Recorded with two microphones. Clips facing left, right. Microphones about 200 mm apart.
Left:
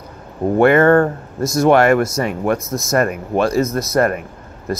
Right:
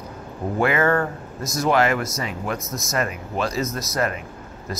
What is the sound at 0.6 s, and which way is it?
Speech, 55° left (ahead or behind).